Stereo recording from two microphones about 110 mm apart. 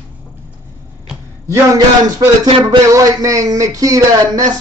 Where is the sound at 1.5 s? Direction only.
30° right (ahead or behind).